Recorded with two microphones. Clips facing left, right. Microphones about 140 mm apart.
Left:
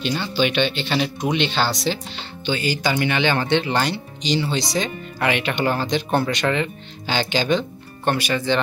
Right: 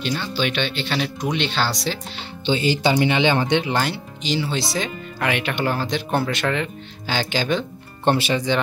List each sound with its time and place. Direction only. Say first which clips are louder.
0.0 s speech: left 2 dB; centre (ahead or behind)
2.4 s speech: right 3 dB; 25° right (ahead or behind); by 7.6 s 5° right (ahead or behind)
8.0 s speech: right 2 dB; 25° right (ahead or behind)